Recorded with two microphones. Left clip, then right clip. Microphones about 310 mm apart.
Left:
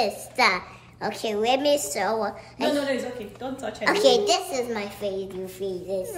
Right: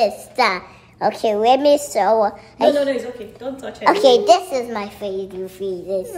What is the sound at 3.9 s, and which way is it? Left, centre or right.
A child's voice, centre.